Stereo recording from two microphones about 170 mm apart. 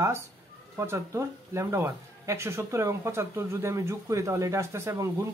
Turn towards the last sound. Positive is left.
turn(degrees=-15)  # may be behind; listen again after turning